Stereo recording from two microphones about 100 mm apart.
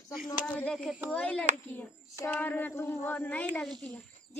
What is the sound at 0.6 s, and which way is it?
Speech, 10° left (ahead or behind).